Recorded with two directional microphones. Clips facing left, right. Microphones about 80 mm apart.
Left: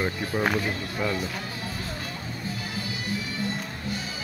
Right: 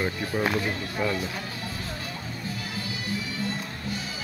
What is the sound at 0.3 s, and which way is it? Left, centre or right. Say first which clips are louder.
Speech: left 1 dB; centre.